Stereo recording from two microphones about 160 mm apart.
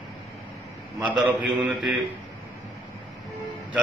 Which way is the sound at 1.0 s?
10° right (ahead or behind).